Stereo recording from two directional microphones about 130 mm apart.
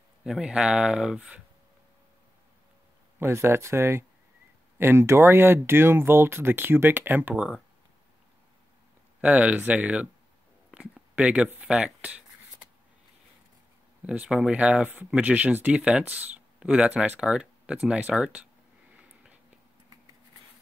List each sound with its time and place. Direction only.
0.2 s speech: 5° right (ahead or behind)
3.2 s speech: 20° right (ahead or behind)
9.2 s speech: 10° right (ahead or behind)
10.7 s writing: 10° right (ahead or behind)
14.0 s speech: 10° right (ahead or behind)